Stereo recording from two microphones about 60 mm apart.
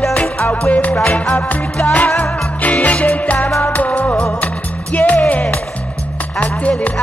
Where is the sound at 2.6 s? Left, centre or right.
Left.